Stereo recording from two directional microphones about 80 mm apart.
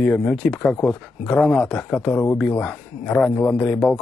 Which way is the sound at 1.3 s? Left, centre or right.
Centre.